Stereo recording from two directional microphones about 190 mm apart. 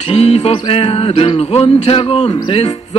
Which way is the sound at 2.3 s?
25° left (ahead or behind).